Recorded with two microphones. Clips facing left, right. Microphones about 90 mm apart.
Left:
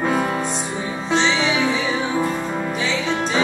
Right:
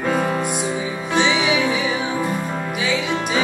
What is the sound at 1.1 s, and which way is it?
Music, 10° right (ahead or behind).